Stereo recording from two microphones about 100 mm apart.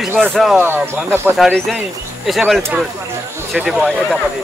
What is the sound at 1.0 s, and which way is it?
Speech, 25° right (ahead or behind).